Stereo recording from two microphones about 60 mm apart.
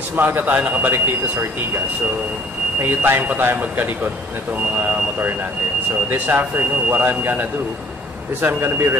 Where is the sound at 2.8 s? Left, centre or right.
Right.